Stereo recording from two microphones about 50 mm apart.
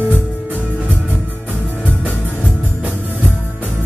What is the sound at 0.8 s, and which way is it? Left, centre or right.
Music, right.